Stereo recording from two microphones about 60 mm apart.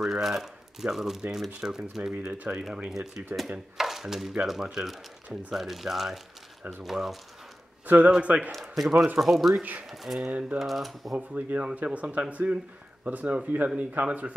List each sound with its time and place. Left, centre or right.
0.0 s speech: centre
2.3 s speech: right
2.9 s speech: centre
7.8 s a sound: right
8.1 s speech: right
8.5 s speech: centre
8.9 s speech: right
9.2 s speech: centre
9.6 s speech: right
9.8 s speech: centre
11.1 s speech: centre